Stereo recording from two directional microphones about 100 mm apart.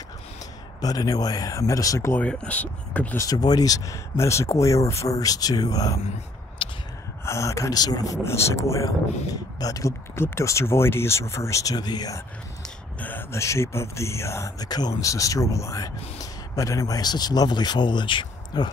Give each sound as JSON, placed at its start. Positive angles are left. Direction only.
{"t": 0.7, "sound": "speech", "side_deg": 40}
{"t": 2.1, "sound": "speech", "side_deg": 10}
{"t": 3.2, "sound": "speech", "side_deg": 40}
{"t": 6.6, "sound": "a sound", "side_deg": 60}
{"t": 7.2, "sound": "speech", "side_deg": 30}
{"t": 12.6, "sound": "a sound", "side_deg": 15}
{"t": 13.3, "sound": "speech", "side_deg": 30}